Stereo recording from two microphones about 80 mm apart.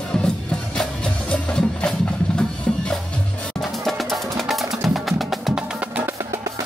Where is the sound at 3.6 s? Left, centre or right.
Centre.